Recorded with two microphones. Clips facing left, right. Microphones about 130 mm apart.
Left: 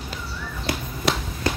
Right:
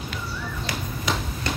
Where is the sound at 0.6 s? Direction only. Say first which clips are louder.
Left 5 dB; 85° left.